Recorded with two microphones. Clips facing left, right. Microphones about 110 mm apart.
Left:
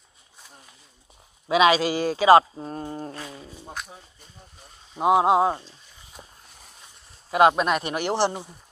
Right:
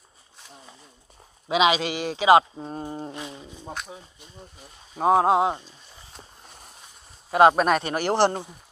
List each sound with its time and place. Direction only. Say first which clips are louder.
1.5 s speech: left 2 dB; 20° right (ahead or behind)
1.8 s speech: left 4 dB; 40° left (ahead or behind)
2.7 s a sound: even; 15° right (ahead or behind)
5.0 s speech: even; 15° left (ahead or behind)
5.3 s speech: left 1 dB; 20° right (ahead or behind)
6.4 s a sound: right 4 dB; 50° right (ahead or behind)
7.2 s speech: right 2 dB; 30° right (ahead or behind); by 8.3 s 45° right (ahead or behind)